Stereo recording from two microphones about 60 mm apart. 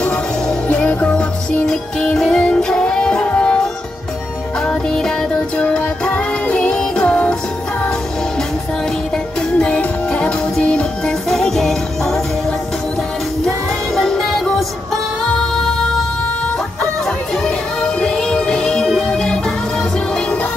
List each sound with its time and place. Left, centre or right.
0.0 s music: centre
4.6 s music: centre
9.6 s music: centre
11.2 s music: centre
14.0 s music: centre
17.8 s music: centre